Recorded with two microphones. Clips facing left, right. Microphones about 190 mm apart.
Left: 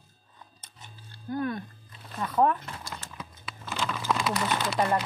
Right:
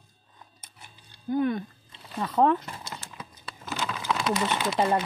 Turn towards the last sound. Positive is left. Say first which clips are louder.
# right 2 dB
turn(degrees=-20)  # may be behind; listen again after turning